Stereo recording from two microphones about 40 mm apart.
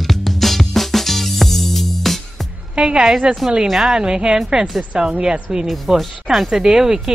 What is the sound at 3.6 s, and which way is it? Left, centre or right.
Speech, centre.